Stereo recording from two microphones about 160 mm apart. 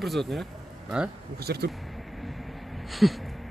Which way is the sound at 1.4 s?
85° right.